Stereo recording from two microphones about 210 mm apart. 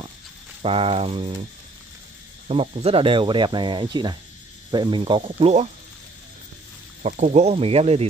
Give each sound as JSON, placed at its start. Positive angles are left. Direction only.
{"t": 0.6, "sound": "speech", "side_deg": -25}
{"t": 2.4, "sound": "speech", "side_deg": -30}
{"t": 7.0, "sound": "speech", "side_deg": -35}